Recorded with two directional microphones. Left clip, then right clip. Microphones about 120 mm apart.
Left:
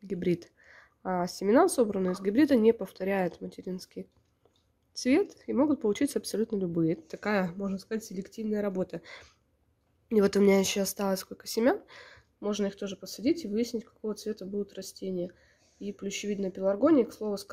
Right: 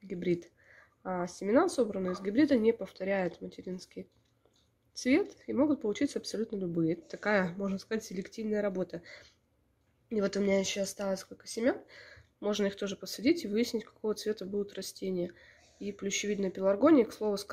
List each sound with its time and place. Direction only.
0.1 s speech: 40° left (ahead or behind); by 8.8 s 25° left (ahead or behind)
8.8 s speech: 40° left (ahead or behind)
10.0 s speech: 60° left (ahead or behind); by 12.2 s 40° left (ahead or behind)
12.4 s speech: 15° left (ahead or behind)